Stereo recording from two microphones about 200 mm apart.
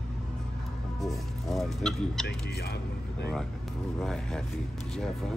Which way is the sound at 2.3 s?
55° left (ahead or behind).